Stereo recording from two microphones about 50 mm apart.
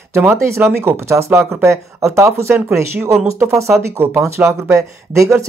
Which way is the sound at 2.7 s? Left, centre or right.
Right.